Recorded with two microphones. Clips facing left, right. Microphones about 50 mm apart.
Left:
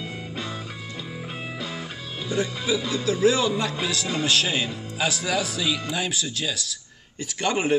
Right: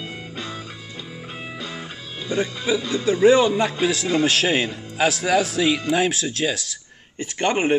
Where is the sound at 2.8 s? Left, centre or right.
Centre.